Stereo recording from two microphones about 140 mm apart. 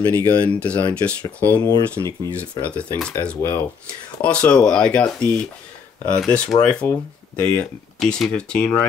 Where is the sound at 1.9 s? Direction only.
25° right (ahead or behind).